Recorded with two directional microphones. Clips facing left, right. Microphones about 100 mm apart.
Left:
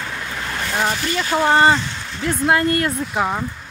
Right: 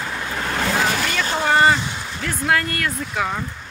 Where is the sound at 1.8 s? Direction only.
10° right (ahead or behind).